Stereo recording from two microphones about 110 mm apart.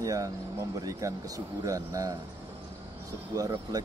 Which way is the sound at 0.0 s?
30° right (ahead or behind).